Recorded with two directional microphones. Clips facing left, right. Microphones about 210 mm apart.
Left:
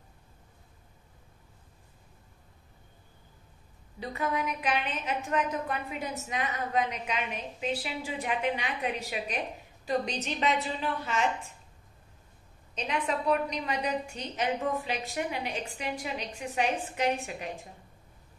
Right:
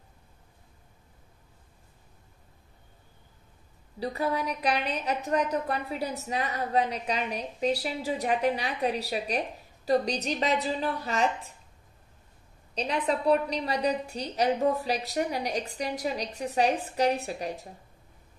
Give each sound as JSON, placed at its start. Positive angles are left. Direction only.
{"t": 4.0, "sound": "a woman's voice", "side_deg": -35}
{"t": 12.7, "sound": "a woman's voice", "side_deg": -35}